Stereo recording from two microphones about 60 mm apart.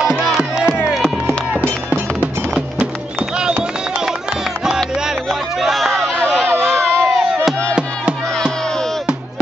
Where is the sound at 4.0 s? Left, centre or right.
Centre.